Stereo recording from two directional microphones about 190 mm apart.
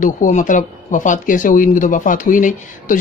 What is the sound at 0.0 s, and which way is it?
Speech, 40° left (ahead or behind).